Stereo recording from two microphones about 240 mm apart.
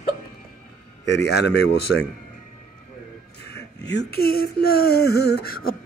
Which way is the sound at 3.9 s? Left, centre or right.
Left.